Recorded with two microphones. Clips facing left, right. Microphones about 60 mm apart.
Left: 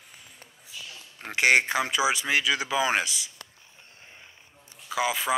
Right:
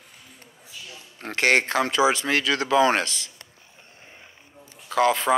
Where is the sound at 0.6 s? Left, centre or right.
Centre.